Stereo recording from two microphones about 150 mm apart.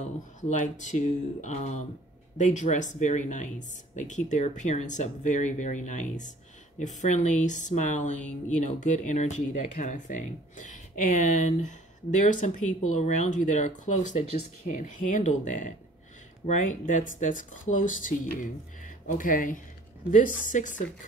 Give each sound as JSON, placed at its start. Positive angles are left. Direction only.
{"t": 0.0, "sound": "speech", "side_deg": 55}